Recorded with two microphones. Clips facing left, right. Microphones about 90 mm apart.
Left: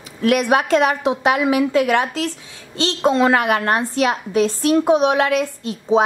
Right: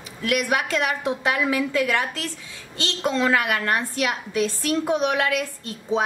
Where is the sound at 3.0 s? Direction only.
25° left (ahead or behind).